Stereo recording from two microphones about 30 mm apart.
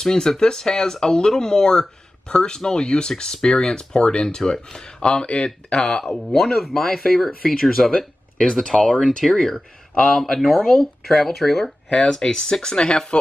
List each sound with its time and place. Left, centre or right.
0.0 s speech: centre; by 4.4 s left
4.4 s speech: centre
5.0 s speech: left
6.1 s speech: centre
8.6 s speech: left
10.0 s speech: centre
12.0 s speech: left
12.7 s speech: left